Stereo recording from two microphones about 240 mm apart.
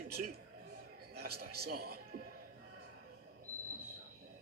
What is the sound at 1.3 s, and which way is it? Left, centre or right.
Speech, right.